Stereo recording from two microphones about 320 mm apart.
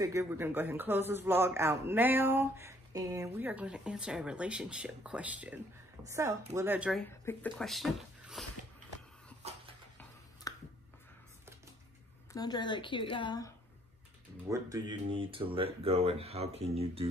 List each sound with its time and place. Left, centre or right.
0.0 s speech: centre
10.5 s a sound: centre
12.3 s a woman's voice: centre
14.5 s speech: centre